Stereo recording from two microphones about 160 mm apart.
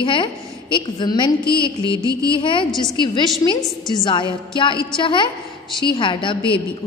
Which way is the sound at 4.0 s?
30° left (ahead or behind).